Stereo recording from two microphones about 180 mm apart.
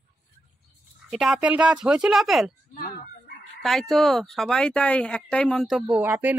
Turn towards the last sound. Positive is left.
turn(degrees=-10)  # may be behind; listen again after turning